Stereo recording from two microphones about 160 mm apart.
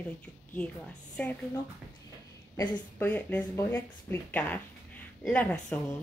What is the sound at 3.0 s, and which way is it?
Speech, 10° left (ahead or behind).